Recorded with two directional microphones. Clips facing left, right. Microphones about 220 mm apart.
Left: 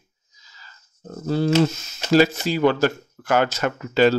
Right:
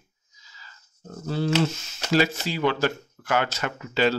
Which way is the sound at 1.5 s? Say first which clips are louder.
Left 5 dB; 40° left (ahead or behind).